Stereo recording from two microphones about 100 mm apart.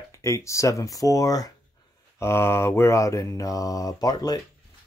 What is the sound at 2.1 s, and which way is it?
Speech, 25° left (ahead or behind).